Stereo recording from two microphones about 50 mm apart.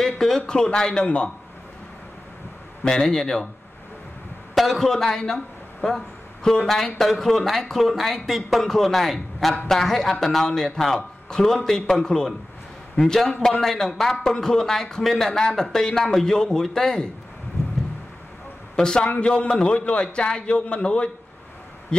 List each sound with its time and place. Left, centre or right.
0.0 s a sound: centre
0.5 s a man's voice: centre
2.8 s a man's voice: centre
4.6 s a man's voice: centre
18.8 s a man's voice: centre